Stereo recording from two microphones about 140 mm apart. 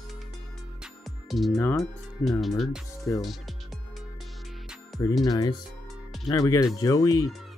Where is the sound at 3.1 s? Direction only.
20° left (ahead or behind).